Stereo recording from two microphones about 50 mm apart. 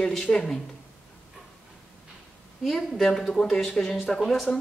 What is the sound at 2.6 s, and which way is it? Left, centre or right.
Speech, centre.